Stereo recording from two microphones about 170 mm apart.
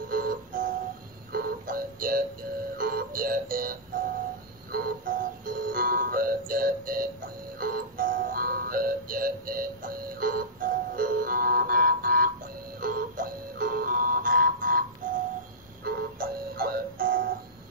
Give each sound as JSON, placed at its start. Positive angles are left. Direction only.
{"t": 0.1, "sound": "music", "side_deg": -55}